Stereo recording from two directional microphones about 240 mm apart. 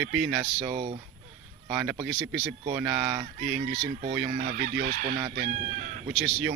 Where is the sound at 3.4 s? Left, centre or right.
Right.